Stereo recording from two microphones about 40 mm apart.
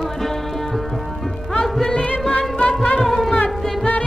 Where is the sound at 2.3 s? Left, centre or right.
Left.